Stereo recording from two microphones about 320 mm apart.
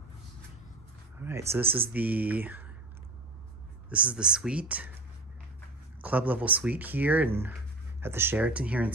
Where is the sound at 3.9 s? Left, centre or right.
Centre.